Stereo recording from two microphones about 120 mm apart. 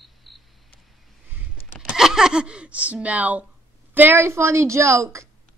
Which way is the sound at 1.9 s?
5° right (ahead or behind).